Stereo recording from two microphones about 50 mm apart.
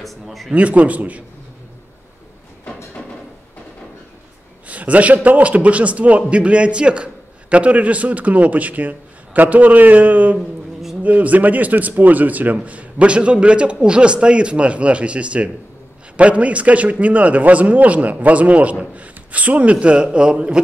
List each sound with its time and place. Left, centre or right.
0.0 s speech: centre
0.5 s a man's voice: right
4.6 s a man's voice: right